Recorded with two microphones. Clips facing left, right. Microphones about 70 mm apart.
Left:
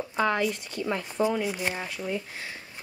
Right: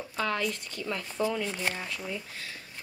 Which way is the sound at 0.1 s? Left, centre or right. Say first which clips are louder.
Left 5 dB; left.